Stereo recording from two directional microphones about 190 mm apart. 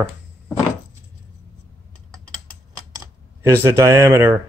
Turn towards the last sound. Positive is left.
turn(degrees=-20)  # may be behind; listen again after turning